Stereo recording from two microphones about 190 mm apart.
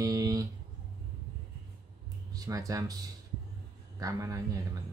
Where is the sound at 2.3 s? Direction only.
20° right (ahead or behind).